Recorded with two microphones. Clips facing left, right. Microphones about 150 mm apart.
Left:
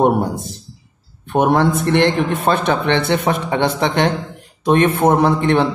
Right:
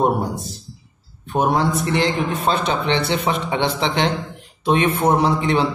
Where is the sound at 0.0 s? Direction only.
55° left (ahead or behind).